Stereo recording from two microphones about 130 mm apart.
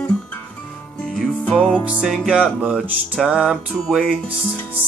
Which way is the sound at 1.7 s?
10° right (ahead or behind).